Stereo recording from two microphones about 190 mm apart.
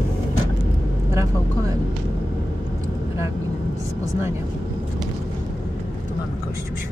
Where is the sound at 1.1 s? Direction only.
15° right (ahead or behind).